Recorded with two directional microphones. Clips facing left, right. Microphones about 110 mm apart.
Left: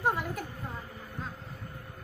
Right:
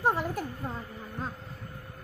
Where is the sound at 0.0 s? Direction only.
35° right (ahead or behind).